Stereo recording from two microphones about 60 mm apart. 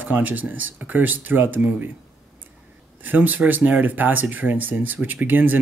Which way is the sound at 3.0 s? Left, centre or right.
Right.